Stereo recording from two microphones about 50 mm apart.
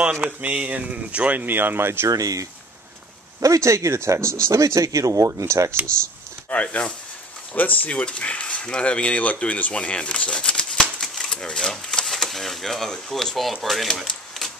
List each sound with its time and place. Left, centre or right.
0.0 s speech: right
1.4 s speech: right
3.3 s speech: right
6.5 s speech: left
7.9 s speech: left; by 13.8 s centre